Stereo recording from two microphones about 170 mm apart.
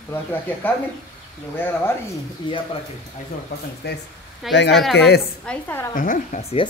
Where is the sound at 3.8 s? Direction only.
75° left (ahead or behind).